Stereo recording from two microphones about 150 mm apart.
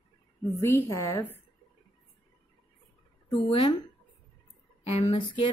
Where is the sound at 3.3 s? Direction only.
30° left (ahead or behind).